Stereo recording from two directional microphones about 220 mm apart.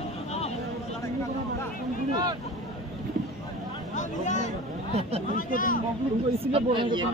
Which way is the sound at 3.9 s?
35° left (ahead or behind).